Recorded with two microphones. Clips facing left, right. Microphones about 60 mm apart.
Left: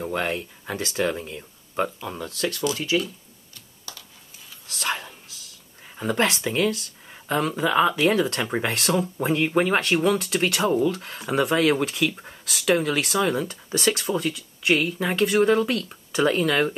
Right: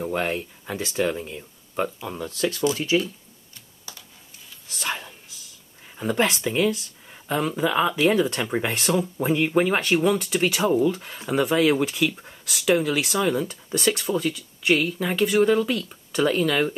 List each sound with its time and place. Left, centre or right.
0.1 s speech: centre
2.5 s speech: right
4.8 s a sound: centre
5.9 s speech: centre